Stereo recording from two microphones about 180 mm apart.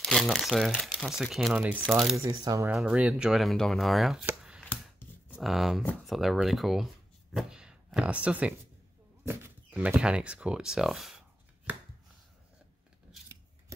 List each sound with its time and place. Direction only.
0.0 s speech: centre (ahead or behind)
2.2 s speech: 20° right (ahead or behind)
2.7 s speech: 5° right (ahead or behind)
4.3 s a sound: 5° right (ahead or behind)
4.6 s a sound: 10° left (ahead or behind)
5.4 s speech: centre (ahead or behind)